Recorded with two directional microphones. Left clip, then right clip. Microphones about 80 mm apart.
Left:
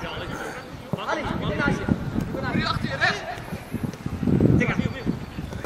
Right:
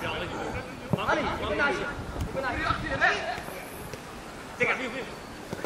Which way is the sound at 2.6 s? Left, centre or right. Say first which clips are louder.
Left 2 dB; left.